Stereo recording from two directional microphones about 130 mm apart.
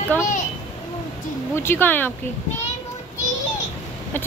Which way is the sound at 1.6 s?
15° left (ahead or behind).